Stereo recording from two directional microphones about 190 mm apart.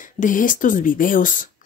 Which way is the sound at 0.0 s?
45° left (ahead or behind).